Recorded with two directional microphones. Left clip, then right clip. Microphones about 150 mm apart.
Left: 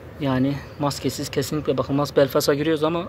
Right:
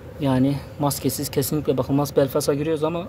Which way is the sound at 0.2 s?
25° right (ahead or behind).